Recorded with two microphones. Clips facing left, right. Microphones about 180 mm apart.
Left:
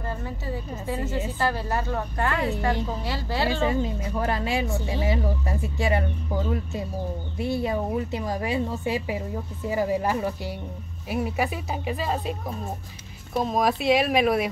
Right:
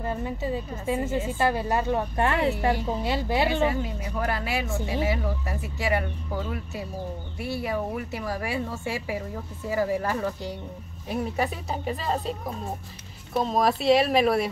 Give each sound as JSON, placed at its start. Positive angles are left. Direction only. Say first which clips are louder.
{"t": 0.0, "sound": "a woman's voice", "louder": "right 3 dB", "side_deg": -20}
{"t": 3.6, "sound": "a woman's voice", "louder": "left 1 dB", "side_deg": 25}
{"t": 7.3, "sound": "a woman's voice", "louder": "left 3 dB", "side_deg": 25}